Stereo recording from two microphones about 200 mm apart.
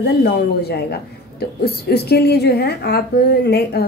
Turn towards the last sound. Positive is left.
turn(degrees=55)  # may be behind; listen again after turning